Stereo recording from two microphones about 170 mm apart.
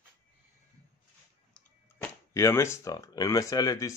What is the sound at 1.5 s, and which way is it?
Speech, 15° left (ahead or behind).